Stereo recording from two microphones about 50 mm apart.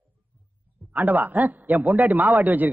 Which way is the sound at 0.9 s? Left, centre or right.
Right.